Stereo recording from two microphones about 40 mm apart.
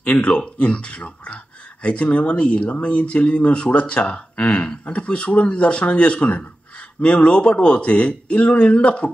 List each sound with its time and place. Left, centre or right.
0.0 s speech: left